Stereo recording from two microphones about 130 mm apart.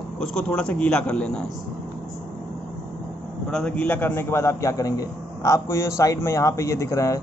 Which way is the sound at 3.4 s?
5° left (ahead or behind).